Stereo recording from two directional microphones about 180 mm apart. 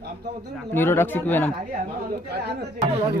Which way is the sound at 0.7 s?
10° left (ahead or behind).